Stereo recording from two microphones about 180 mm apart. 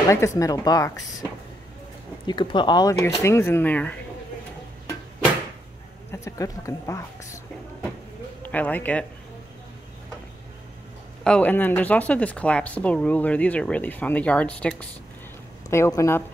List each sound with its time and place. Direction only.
0.1 s speech: 15° left (ahead or behind)
6.1 s speech: 15° left (ahead or behind)
8.4 s speech: 10° left (ahead or behind)
11.2 s speech: 5° left (ahead or behind)